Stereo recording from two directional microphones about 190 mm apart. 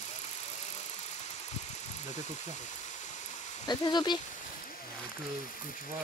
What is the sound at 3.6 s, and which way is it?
Speech, 20° left (ahead or behind).